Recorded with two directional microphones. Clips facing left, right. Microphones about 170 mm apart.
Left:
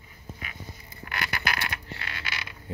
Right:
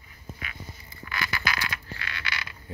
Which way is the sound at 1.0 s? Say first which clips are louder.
Even; 60° left (ahead or behind).